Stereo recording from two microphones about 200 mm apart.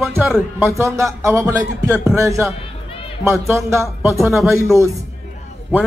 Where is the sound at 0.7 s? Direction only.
15° right (ahead or behind).